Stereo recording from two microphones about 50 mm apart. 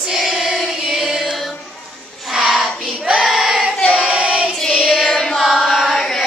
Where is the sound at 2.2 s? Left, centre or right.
Centre.